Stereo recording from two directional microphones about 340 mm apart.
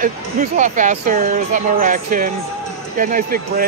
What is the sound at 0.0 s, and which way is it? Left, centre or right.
Speech, right.